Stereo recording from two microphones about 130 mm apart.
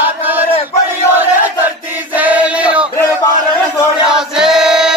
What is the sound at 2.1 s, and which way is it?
Chant, 10° right (ahead or behind).